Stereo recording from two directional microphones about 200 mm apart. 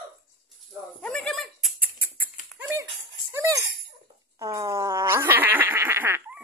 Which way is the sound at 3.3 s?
15° right (ahead or behind).